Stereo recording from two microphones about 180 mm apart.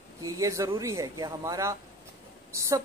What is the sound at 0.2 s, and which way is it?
Speech, 20° right (ahead or behind).